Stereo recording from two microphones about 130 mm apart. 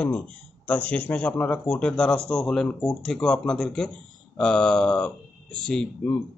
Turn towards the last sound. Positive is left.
turn(degrees=5)  # may be behind; listen again after turning